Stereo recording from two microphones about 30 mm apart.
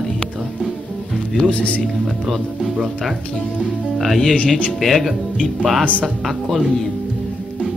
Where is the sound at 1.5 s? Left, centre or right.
Left.